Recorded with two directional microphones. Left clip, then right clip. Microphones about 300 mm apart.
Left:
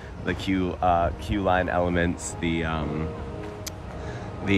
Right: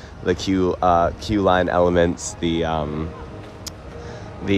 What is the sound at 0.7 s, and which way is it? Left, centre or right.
Speech, left.